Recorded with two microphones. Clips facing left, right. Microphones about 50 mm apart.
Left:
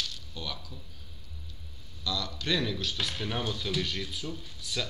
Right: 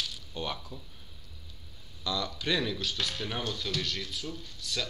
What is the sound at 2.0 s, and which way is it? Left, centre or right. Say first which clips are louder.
Speech: right 1 dB; right.